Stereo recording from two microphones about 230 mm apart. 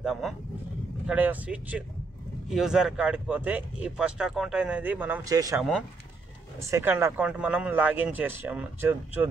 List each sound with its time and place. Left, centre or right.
0.0 s speech: centre
5.6 s speech: centre